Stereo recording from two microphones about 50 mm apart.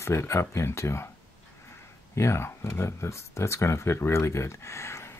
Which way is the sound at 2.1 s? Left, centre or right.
Left.